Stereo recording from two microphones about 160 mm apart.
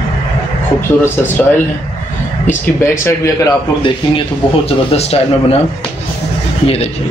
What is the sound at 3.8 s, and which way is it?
Speech, 35° left (ahead or behind).